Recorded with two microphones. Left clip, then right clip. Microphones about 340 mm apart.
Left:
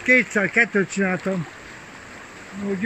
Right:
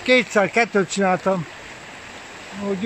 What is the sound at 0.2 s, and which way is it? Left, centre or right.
Speech, right.